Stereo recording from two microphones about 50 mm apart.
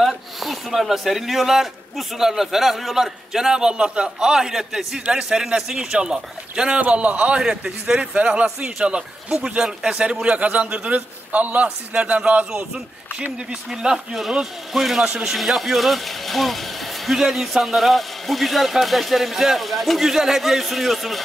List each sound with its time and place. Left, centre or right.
0.0 s speech: centre
6.9 s speech: right
13.5 s a man's voice: centre